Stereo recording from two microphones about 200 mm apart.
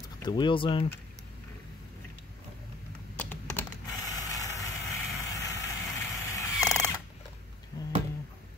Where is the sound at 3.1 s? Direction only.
10° left (ahead or behind).